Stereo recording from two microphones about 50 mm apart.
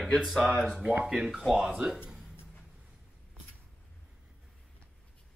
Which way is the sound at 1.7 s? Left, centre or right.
Centre.